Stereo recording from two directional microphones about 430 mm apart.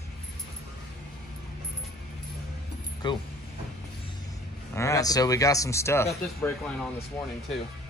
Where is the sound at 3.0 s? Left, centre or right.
Centre.